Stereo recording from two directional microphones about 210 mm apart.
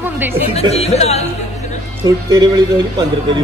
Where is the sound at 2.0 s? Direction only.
20° right (ahead or behind).